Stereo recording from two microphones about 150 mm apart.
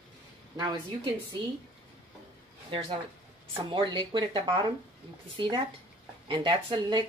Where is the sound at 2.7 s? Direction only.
35° right (ahead or behind).